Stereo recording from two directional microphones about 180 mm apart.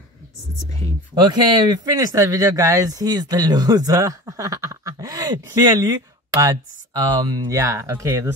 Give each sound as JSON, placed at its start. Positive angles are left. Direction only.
{"t": 1.1, "sound": "speech", "side_deg": -25}